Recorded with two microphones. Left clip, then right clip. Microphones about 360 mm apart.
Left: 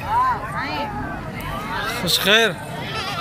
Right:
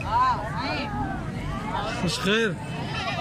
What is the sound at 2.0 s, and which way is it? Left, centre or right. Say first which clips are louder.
Speech: left 9 dB; centre.